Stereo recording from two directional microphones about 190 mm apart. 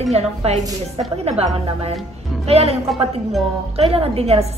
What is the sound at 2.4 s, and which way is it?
Speech, 30° right (ahead or behind).